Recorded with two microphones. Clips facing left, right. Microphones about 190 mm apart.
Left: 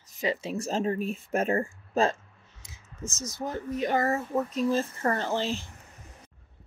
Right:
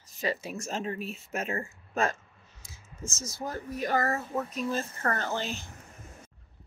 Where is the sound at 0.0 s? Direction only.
20° left (ahead or behind); by 1.5 s 50° left (ahead or behind).